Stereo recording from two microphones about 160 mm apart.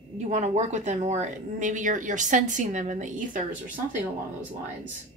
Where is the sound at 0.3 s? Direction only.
45° right (ahead or behind).